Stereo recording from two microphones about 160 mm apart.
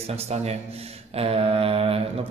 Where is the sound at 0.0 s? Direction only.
40° right (ahead or behind).